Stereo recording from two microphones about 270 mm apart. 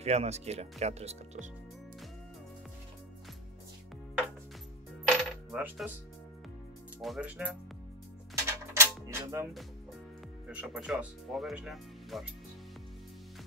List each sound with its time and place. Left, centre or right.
0.0 s speech: right
5.0 s coin: centre
7.0 s speech: centre
8.5 s music: centre
10.5 s speech: centre